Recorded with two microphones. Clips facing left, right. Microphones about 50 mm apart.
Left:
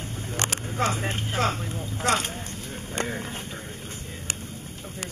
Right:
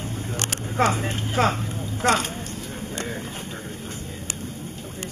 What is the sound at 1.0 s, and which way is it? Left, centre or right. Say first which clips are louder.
Speech: right 2 dB; centre.